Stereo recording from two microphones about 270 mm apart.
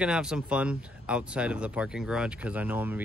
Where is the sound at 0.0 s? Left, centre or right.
Centre.